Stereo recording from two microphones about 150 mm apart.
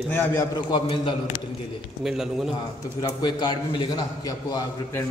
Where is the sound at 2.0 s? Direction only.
5° right (ahead or behind).